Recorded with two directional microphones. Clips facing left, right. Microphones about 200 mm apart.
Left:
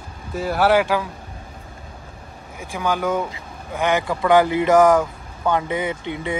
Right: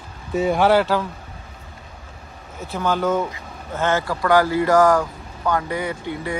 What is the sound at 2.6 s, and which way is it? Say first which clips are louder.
Speech: right 1 dB; 10° left (ahead or behind).